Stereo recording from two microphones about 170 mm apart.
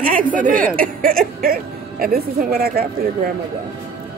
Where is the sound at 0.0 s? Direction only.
55° right (ahead or behind).